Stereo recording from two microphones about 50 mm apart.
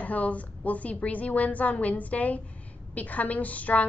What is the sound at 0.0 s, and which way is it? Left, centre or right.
A woman's voice, left.